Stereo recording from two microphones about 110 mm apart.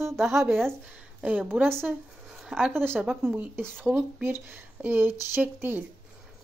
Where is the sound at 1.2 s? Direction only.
15° right (ahead or behind).